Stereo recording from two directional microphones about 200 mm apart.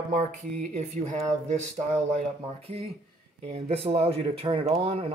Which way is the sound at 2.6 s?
30° right (ahead or behind).